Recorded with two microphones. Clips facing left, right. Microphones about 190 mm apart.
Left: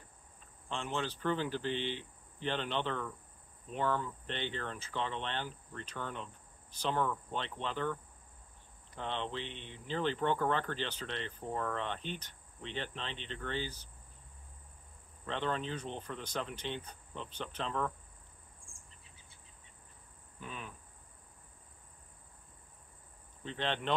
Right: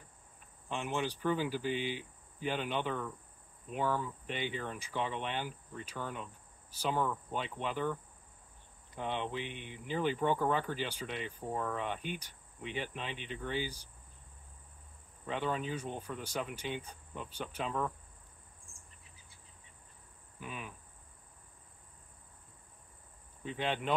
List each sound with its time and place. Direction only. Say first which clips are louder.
0.7 s speech: right 2 dB; 15° right (ahead or behind)
15.2 s speech: right 1 dB; 10° right (ahead or behind)
20.3 s cricket: right 1 dB; 10° right (ahead or behind)
23.4 s speech: right 1 dB; 10° right (ahead or behind)